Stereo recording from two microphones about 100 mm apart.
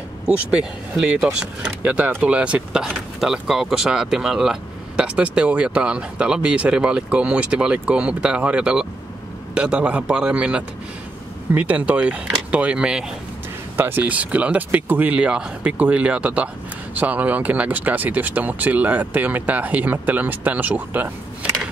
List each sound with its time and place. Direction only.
0.5 s speech: 10° right (ahead or behind)
13.7 s speech: 20° right (ahead or behind)